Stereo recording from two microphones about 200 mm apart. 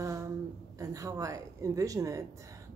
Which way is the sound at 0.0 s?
15° right (ahead or behind).